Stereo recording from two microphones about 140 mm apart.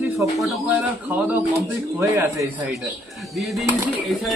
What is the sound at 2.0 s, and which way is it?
Speech, 20° right (ahead or behind).